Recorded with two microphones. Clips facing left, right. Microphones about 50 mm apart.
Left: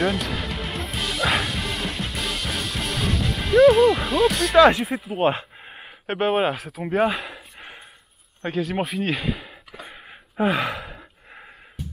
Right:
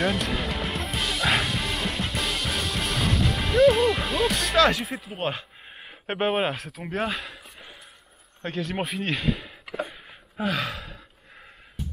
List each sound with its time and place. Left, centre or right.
0.0 s music: centre
4.6 s speech: centre
4.8 s speech: centre
8.4 s speech: centre
10.3 s gasp: left